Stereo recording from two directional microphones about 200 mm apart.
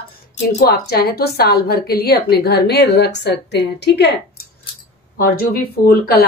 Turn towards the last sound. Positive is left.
turn(degrees=50)  # may be behind; listen again after turning